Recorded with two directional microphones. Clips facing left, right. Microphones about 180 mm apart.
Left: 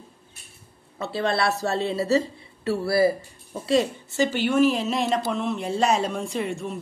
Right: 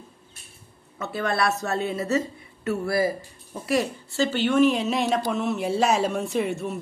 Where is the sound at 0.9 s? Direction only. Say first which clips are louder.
Left 1 dB; 30° left (ahead or behind).